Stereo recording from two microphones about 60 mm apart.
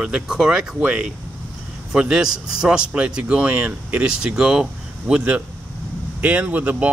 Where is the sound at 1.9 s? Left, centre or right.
Centre.